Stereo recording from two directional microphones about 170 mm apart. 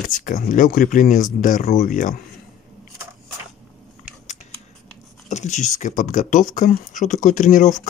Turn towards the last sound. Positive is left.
turn(degrees=45)  # may be behind; listen again after turning